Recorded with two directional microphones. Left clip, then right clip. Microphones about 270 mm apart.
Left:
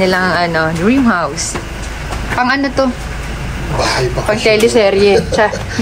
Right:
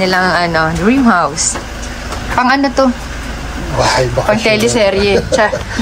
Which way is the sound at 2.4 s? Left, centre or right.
Centre.